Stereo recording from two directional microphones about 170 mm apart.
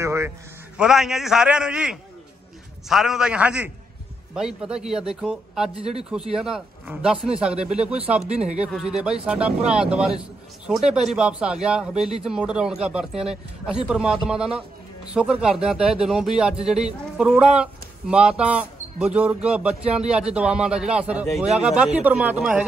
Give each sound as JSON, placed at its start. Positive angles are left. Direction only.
{"t": 0.0, "sound": "a sound", "side_deg": -15}
{"t": 0.7, "sound": "speech", "side_deg": -5}
{"t": 5.8, "sound": "speech", "side_deg": -35}
{"t": 6.3, "sound": "speech", "side_deg": -5}